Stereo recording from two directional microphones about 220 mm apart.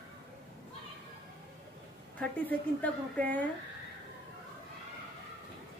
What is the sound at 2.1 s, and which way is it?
A woman's voice, 5° left (ahead or behind).